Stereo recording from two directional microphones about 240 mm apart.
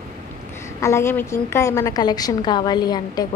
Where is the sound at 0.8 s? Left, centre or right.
Centre.